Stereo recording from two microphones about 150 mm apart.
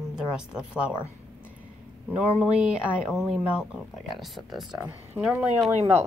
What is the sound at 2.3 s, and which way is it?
A woman's voice, 5° right (ahead or behind).